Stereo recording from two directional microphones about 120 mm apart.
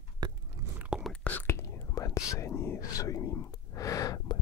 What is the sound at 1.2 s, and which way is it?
Whispering, 15° left (ahead or behind).